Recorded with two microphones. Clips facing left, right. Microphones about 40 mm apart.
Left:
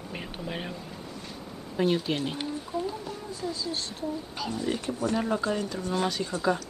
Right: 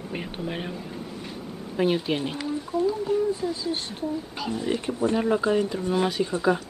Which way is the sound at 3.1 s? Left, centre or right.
Right.